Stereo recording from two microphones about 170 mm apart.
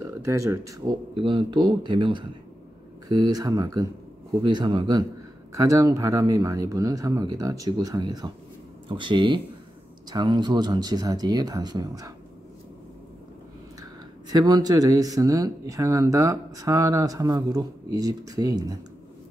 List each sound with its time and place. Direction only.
0.0 s speech: 20° right (ahead or behind)
1.1 s speech: 30° right (ahead or behind)
14.3 s speech: 25° right (ahead or behind)